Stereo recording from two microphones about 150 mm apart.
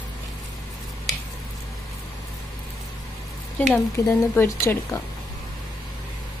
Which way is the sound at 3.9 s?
15° left (ahead or behind).